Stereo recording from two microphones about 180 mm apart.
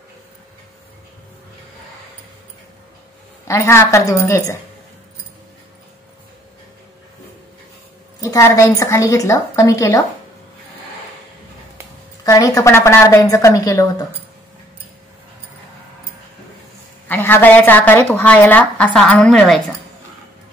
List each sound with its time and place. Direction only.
3.4 s a woman's voice: 15° left (ahead or behind)
8.2 s a woman's voice: 15° left (ahead or behind)
12.3 s a woman's voice: 20° left (ahead or behind)
17.1 s a woman's voice: 10° left (ahead or behind)